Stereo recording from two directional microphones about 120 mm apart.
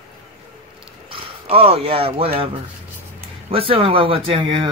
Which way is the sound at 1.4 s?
55° right (ahead or behind).